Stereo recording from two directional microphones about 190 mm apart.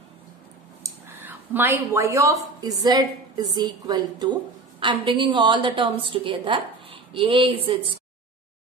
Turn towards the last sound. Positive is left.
turn(degrees=-25)  # may be behind; listen again after turning